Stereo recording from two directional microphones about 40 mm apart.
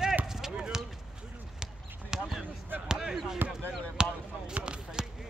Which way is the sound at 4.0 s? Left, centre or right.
Right.